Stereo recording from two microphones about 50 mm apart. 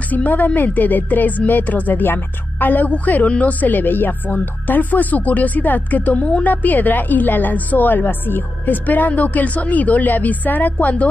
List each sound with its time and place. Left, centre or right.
0.1 s speech: left